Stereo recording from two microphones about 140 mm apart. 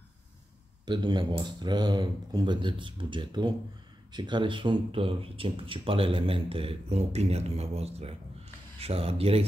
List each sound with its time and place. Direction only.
0.8 s speech: 35° right (ahead or behind)